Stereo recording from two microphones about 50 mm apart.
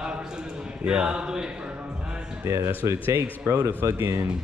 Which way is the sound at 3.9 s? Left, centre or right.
Right.